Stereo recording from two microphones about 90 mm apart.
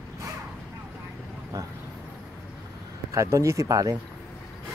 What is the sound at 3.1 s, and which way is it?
Speech, 35° right (ahead or behind).